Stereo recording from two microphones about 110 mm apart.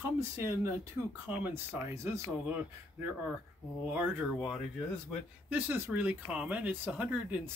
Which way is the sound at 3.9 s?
10° right (ahead or behind).